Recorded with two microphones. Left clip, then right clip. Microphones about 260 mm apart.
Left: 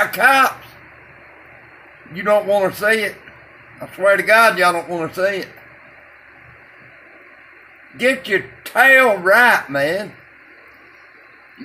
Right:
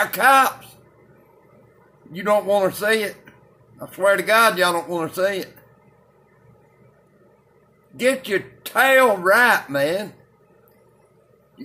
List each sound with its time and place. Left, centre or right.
0.0 s speech: centre
2.1 s speech: centre
8.0 s speech: centre